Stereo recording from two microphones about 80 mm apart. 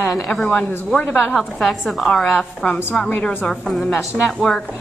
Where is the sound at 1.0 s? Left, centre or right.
Centre.